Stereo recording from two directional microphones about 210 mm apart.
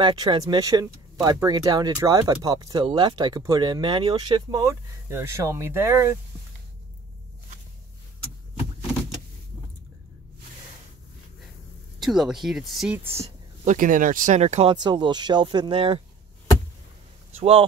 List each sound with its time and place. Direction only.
0.0 s speech: 20° right (ahead or behind)
12.0 s speech: centre (ahead or behind)
13.2 s speech: 35° right (ahead or behind)
17.3 s speech: 25° right (ahead or behind)